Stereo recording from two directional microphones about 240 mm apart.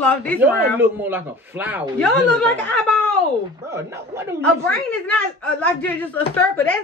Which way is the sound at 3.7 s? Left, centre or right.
Centre.